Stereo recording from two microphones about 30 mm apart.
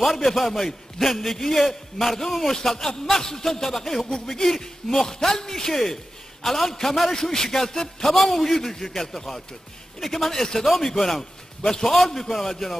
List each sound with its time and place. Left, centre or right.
0.0 s a man's voice: centre
7.2 s a man's voice: centre